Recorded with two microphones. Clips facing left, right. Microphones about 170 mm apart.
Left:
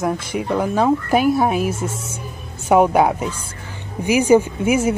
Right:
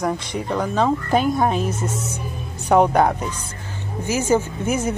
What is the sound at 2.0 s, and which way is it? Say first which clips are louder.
Music: right 3 dB; 25° left (ahead or behind).